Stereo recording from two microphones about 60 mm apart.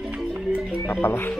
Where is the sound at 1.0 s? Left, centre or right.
Left.